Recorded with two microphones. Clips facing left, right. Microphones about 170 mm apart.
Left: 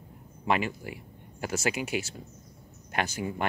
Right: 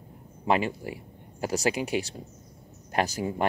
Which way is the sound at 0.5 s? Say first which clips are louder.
Right 3 dB; 30° right (ahead or behind).